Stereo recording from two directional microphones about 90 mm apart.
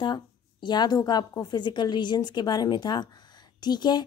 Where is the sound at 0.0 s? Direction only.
55° left (ahead or behind).